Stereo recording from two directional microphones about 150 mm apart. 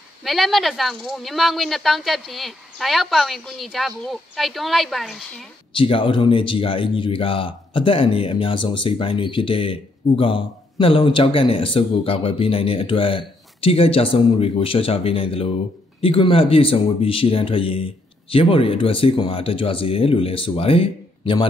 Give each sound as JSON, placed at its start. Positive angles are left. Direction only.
{"t": 0.2, "sound": "speech", "side_deg": 0}
{"t": 5.7, "sound": "speech", "side_deg": 35}